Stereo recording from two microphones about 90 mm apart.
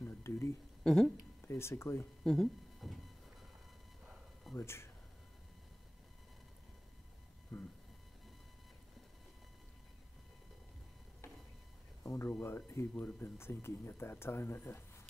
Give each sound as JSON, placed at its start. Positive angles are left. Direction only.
{"t": 0.0, "sound": "a sound", "side_deg": 30}
{"t": 0.8, "sound": "speech", "side_deg": 5}
{"t": 1.4, "sound": "speech", "side_deg": 30}
{"t": 2.2, "sound": "a sound", "side_deg": 5}
{"t": 4.6, "sound": "speech", "side_deg": 30}
{"t": 12.0, "sound": "speech", "side_deg": 30}